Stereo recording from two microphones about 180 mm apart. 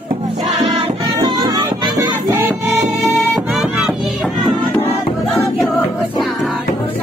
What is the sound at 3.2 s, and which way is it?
Music, centre (ahead or behind).